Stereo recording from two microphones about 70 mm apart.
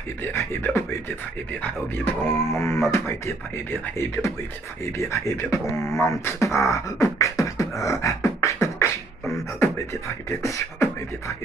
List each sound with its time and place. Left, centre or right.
0.2 s speech: left
2.4 s beatboxing: left
2.9 s speech: left
4.9 s beatboxing: left
10.4 s beatboxing: left